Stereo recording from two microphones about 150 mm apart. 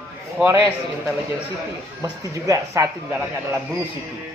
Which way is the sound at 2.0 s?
20° right (ahead or behind).